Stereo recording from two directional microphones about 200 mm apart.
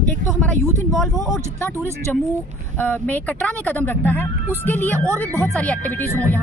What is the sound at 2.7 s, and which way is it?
Speech, 10° left (ahead or behind).